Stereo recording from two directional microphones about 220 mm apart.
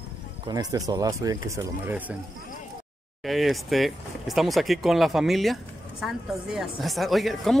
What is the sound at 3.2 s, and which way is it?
Speech, centre (ahead or behind).